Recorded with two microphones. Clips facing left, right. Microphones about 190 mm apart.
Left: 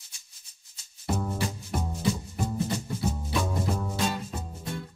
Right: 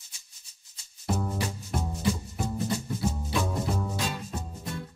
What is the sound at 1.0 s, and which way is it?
Music, centre (ahead or behind).